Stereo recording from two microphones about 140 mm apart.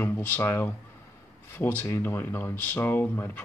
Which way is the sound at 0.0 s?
15° left (ahead or behind).